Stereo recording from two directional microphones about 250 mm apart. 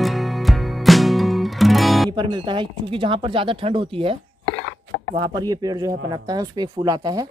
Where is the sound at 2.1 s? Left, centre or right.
Centre.